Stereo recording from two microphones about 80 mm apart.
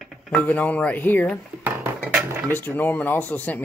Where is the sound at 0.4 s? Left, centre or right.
Centre.